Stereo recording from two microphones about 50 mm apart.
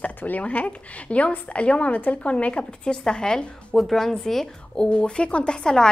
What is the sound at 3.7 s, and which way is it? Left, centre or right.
Speech, centre.